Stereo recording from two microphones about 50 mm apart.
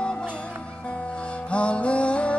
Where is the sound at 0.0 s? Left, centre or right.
Centre.